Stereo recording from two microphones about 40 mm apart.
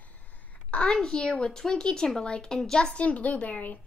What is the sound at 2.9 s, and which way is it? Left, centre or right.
Speech, left.